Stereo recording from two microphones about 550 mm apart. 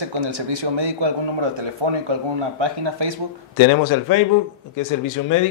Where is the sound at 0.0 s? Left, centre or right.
Right.